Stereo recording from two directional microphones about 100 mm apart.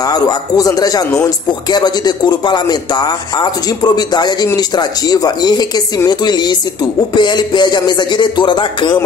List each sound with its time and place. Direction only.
0.0 s speech: 40° left (ahead or behind)